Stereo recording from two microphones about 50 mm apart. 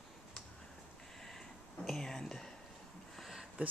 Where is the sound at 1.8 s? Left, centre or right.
Centre.